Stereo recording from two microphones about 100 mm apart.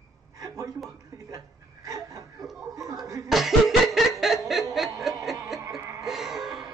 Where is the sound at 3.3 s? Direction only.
Centre (ahead or behind).